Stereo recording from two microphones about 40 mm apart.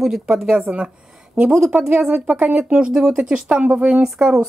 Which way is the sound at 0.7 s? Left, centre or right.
Right.